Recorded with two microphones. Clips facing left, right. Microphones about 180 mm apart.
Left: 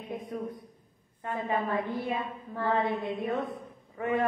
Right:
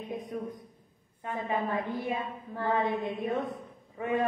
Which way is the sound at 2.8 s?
20° right (ahead or behind).